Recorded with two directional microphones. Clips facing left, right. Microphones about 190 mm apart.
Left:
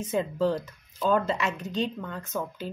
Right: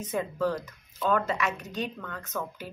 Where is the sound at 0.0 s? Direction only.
25° left (ahead or behind).